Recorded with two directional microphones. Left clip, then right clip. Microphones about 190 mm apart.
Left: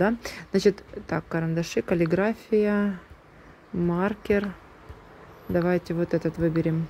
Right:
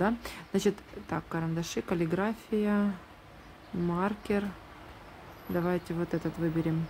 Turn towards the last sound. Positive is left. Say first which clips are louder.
# left 6 dB
turn(degrees=20)  # may be behind; listen again after turning